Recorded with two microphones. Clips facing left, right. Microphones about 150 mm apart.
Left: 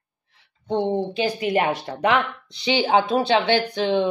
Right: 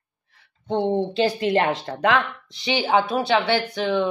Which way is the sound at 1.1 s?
10° left (ahead or behind).